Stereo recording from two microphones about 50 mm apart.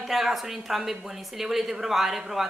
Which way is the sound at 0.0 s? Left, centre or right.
Centre.